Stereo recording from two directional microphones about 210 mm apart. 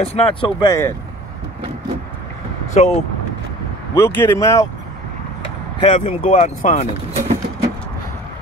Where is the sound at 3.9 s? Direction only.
15° left (ahead or behind).